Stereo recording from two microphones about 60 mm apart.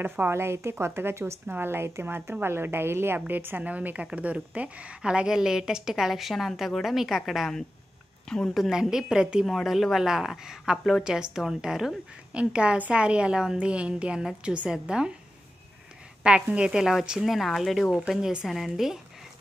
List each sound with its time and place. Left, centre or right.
0.0 s speech: right
0.3 s a woman's voice: right; by 9.5 s centre
9.5 s a woman's voice: centre
12.4 s a woman's voice: centre
16.2 s a woman's voice: centre